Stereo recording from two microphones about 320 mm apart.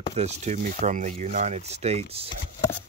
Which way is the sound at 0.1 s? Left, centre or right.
Right.